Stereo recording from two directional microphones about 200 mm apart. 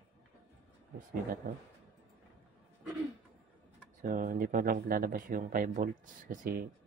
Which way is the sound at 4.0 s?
40° right (ahead or behind).